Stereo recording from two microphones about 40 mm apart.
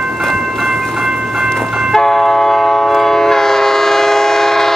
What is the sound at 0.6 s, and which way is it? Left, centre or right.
Train, centre.